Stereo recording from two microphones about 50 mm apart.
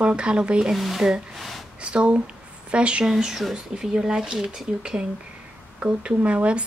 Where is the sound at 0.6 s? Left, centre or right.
Centre.